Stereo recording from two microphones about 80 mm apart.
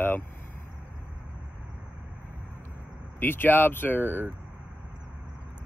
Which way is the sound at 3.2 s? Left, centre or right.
Left.